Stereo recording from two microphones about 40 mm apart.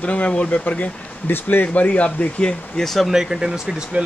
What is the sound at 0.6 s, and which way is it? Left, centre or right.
Speech, left.